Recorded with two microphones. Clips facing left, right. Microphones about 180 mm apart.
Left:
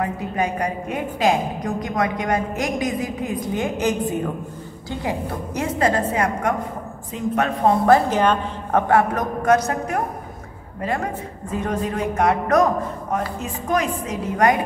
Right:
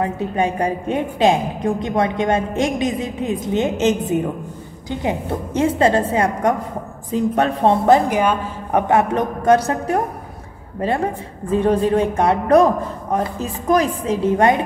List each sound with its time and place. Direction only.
0.0 s a woman's voice: 25° right (ahead or behind)
7.8 s a woman's voice: 15° right (ahead or behind)